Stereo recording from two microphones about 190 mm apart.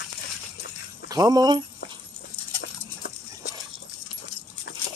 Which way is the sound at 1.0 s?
20° right (ahead or behind).